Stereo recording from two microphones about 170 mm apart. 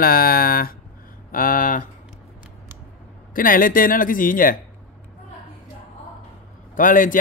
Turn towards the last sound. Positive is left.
turn(degrees=50)  # may be behind; listen again after turning